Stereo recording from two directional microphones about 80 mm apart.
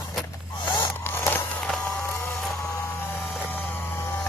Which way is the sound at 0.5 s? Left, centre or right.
Left.